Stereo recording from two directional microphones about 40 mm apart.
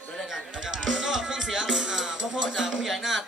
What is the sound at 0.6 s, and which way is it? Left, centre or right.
Music, centre.